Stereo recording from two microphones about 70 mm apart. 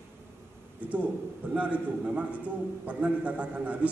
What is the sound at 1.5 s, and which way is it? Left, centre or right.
A man's voice, centre.